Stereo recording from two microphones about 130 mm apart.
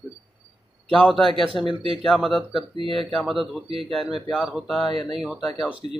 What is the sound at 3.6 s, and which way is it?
Speech, 45° right (ahead or behind).